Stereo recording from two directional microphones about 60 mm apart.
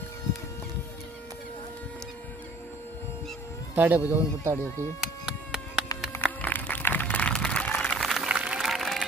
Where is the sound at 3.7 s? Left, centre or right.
Right.